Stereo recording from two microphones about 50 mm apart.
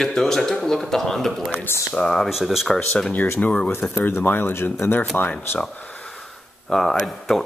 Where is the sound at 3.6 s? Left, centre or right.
Left.